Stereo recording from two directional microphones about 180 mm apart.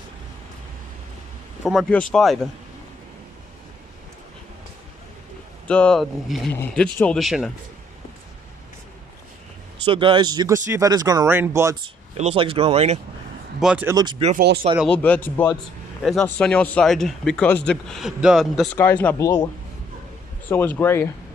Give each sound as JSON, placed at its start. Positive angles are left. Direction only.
{"t": 1.6, "sound": "a man's voice", "side_deg": 0}
{"t": 5.7, "sound": "a man's voice", "side_deg": 5}
{"t": 9.8, "sound": "speech", "side_deg": -25}
{"t": 12.2, "sound": "speech", "side_deg": -30}
{"t": 13.6, "sound": "speech", "side_deg": -5}
{"t": 13.9, "sound": "speech", "side_deg": -25}
{"t": 14.9, "sound": "a man's voice", "side_deg": 10}
{"t": 18.8, "sound": "speech", "side_deg": 10}
{"t": 20.4, "sound": "speech", "side_deg": 10}